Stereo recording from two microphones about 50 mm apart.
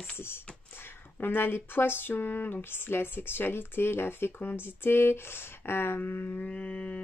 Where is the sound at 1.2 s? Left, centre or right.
Left.